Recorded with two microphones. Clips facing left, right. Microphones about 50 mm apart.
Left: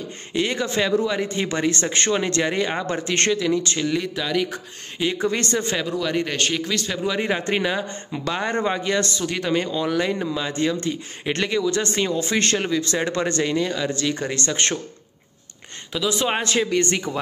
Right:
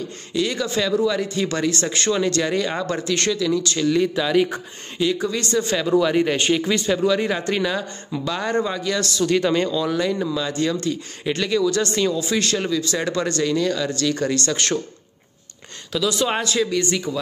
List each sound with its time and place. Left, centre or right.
0.3 s speech: left
4.0 s a man's voice: centre
5.2 s speech: left
5.9 s speech: centre
7.1 s speech: centre
9.2 s speech: centre
9.7 s speech: left
15.9 s speech: left
16.4 s speech: left